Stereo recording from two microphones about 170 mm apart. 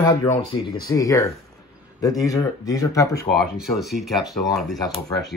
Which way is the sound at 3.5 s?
Centre (ahead or behind).